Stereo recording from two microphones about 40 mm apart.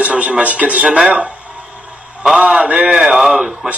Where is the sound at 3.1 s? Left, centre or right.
Centre.